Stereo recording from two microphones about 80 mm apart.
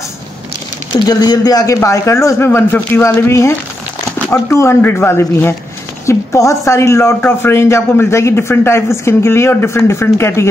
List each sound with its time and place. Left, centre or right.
0.9 s speech: left
7.2 s speech: left